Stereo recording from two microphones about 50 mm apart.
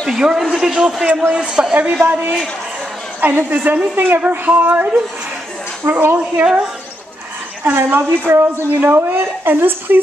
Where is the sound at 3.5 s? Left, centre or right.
Right.